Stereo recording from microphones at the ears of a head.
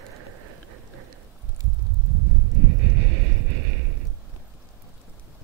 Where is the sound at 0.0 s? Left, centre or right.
Right.